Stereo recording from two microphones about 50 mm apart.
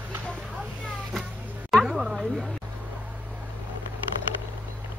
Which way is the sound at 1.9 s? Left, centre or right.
Centre.